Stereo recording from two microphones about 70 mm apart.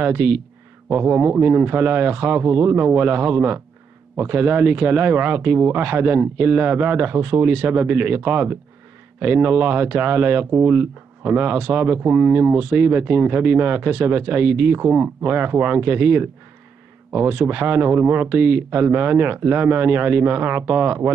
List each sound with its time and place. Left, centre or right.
0.0 s speech: right